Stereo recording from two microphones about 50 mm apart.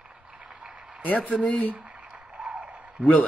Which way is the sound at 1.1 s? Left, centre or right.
Left.